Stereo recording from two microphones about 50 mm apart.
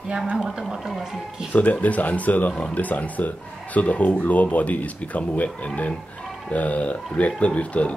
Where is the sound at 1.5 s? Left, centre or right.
Left.